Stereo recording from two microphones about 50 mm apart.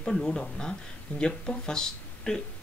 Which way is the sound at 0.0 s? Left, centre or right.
Centre.